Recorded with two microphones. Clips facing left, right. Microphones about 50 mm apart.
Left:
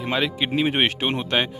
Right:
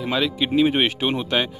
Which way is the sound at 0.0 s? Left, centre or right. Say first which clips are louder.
Right 1 dB; left.